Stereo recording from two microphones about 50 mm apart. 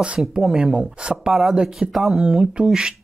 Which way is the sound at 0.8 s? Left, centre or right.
Right.